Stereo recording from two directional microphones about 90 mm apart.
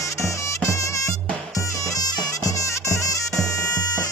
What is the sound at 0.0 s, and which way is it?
Music, 35° left (ahead or behind).